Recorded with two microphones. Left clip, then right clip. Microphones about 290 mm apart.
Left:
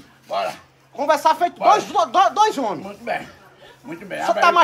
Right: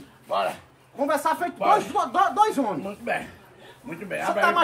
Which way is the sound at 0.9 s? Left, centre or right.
Centre.